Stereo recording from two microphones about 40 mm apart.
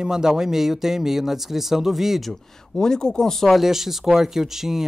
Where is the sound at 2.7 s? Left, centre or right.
Centre.